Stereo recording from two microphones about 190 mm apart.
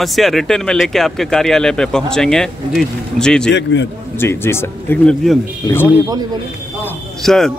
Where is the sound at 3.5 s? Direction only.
70° left (ahead or behind).